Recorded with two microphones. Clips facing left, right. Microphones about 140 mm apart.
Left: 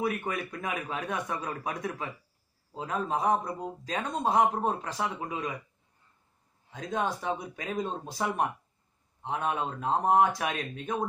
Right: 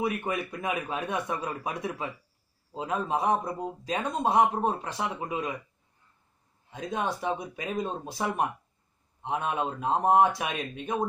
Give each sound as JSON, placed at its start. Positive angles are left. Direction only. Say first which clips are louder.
{"t": 0.0, "sound": "a man's voice", "louder": "right 1 dB", "side_deg": -5}
{"t": 6.7, "sound": "speech", "louder": "even", "side_deg": -10}
{"t": 9.2, "sound": "speech", "louder": "right 1 dB", "side_deg": -15}